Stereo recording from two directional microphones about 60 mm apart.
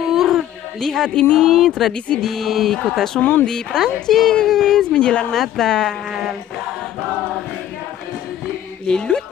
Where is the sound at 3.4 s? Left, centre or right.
Centre.